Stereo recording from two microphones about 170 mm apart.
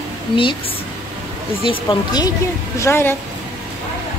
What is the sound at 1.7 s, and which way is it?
Speech, 25° left (ahead or behind).